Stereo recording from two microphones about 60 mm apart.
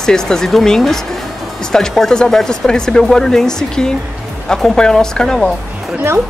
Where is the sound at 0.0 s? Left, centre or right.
Centre.